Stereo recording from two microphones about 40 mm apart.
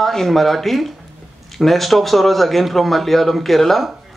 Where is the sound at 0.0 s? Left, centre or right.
Centre.